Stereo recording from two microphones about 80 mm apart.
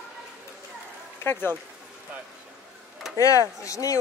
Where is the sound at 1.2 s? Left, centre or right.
Left.